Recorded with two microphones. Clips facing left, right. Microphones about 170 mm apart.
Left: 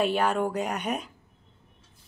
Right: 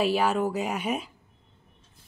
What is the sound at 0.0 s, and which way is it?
Speech, 5° right (ahead or behind).